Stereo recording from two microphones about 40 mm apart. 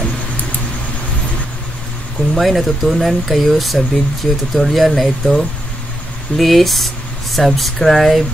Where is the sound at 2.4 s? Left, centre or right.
Centre.